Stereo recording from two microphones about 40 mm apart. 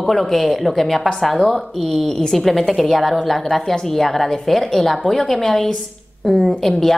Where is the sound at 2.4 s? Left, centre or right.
Centre.